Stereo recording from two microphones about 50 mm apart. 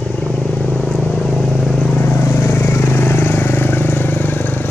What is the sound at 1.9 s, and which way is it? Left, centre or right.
Vehicle, left.